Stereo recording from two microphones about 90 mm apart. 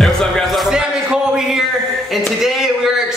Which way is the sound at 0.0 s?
Centre (ahead or behind).